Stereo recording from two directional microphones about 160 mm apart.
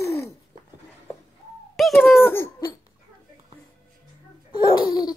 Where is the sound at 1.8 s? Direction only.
Centre (ahead or behind).